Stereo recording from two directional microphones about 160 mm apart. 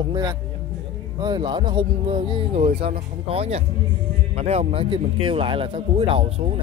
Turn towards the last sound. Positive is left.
turn(degrees=-40)  # may be behind; listen again after turning